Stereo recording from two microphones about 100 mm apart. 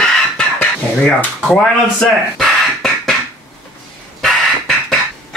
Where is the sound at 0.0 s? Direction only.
15° left (ahead or behind).